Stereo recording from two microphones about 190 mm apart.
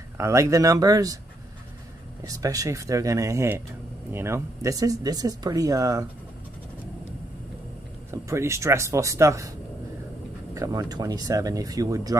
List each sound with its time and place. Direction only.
0.2 s speech: 15° right (ahead or behind)
2.2 s speech: 20° right (ahead or behind)
8.1 s speech: 15° right (ahead or behind)
10.5 s speech: 20° right (ahead or behind)